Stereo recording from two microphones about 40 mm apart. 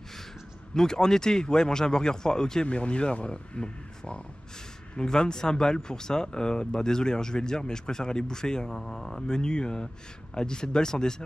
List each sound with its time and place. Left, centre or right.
0.7 s speech: centre
2.6 s speech: left
8.6 s speech: centre
9.3 s speech: left